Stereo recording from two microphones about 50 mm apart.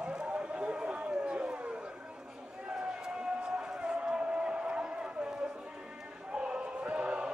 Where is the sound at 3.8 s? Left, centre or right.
Centre.